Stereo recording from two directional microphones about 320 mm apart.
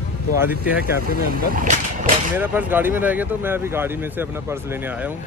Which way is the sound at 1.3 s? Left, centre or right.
Right.